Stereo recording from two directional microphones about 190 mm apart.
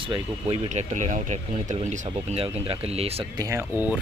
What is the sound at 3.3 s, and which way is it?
Speech, 15° right (ahead or behind).